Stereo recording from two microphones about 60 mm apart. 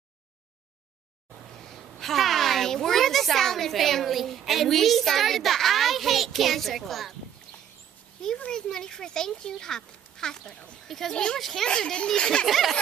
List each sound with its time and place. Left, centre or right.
1.6 s a child's voice: centre
8.5 s speech: centre
12.4 s a sound: centre